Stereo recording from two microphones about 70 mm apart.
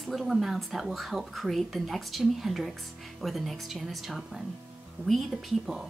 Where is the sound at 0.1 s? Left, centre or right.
Centre.